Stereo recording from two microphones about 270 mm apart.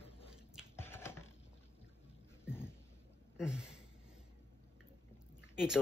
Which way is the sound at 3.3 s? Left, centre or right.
Centre.